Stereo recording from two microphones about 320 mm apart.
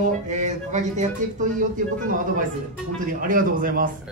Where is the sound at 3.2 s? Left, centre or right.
Right.